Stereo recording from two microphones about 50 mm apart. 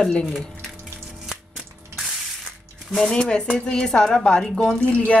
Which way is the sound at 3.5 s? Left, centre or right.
Centre.